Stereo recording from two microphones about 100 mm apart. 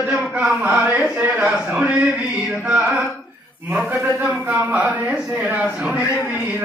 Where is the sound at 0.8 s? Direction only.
15° right (ahead or behind).